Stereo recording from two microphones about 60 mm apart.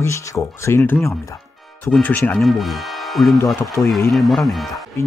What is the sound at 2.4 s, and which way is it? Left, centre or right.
Speech, centre.